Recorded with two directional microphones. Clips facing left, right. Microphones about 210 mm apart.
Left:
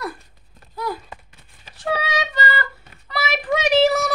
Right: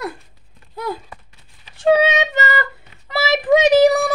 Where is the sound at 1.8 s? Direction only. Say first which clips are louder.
Right 9 dB; 25° right (ahead or behind).